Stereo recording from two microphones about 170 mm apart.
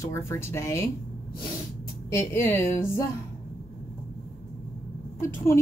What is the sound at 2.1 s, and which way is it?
Speech, 15° left (ahead or behind).